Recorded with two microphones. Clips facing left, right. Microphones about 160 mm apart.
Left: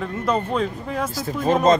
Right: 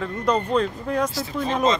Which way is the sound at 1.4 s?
50° left (ahead or behind).